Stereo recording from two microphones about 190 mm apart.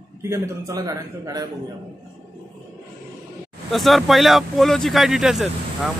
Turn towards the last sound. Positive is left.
turn(degrees=-5)  # may be behind; listen again after turning